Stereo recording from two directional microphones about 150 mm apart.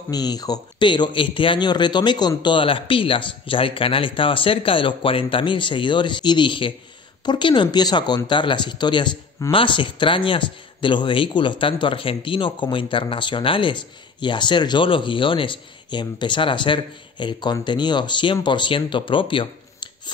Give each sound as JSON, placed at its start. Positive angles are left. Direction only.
{"t": 0.1, "sound": "speech", "side_deg": 25}